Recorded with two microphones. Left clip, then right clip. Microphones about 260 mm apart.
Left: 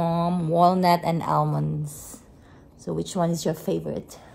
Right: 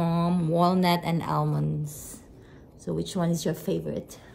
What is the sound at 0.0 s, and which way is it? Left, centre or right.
Mantra, centre.